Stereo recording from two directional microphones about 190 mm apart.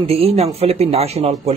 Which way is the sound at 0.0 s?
30° right (ahead or behind).